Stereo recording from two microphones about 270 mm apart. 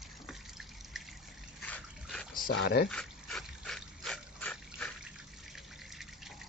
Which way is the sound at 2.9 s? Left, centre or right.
Centre.